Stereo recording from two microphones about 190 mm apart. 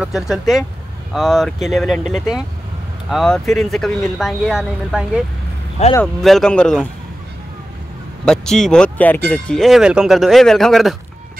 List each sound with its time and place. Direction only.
0.0 s speech: centre (ahead or behind)
5.8 s speech: 35° left (ahead or behind)
6.2 s speech: centre (ahead or behind)
8.3 s speech: 5° left (ahead or behind)